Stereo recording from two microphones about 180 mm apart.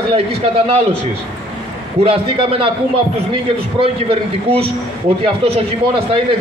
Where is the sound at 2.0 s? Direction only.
30° right (ahead or behind).